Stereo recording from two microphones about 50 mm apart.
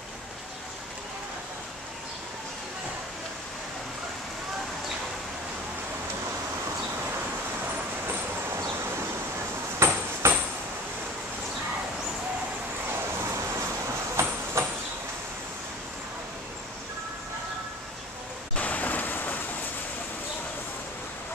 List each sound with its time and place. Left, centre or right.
9.8 s ping: right
10.2 s a sound: right
14.1 s train: right
18.6 s rain: left